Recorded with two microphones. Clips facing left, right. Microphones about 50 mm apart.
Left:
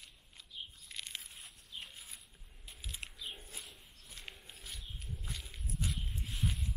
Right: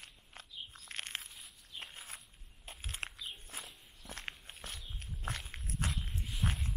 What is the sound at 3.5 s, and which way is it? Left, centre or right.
Walk, right.